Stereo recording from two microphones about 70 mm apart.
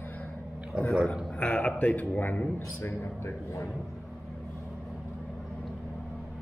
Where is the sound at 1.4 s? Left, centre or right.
Centre; by 3.6 s left.